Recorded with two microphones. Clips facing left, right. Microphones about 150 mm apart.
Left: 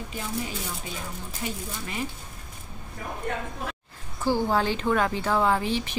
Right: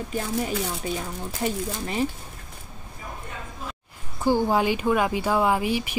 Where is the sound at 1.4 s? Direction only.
30° right (ahead or behind).